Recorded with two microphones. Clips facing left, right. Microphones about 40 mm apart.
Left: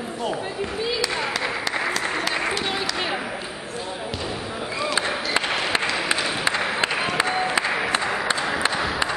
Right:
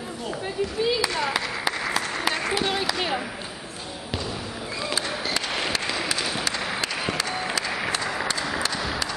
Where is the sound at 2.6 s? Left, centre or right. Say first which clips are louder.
Even; centre.